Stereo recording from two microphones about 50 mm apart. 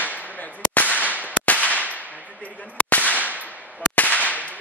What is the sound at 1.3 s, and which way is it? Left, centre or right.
Firecracker, left.